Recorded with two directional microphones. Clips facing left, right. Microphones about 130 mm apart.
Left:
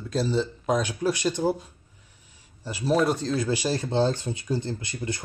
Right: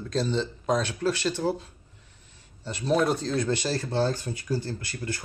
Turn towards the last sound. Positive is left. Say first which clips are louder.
# left 2 dB
turn(degrees=20)  # may be behind; listen again after turning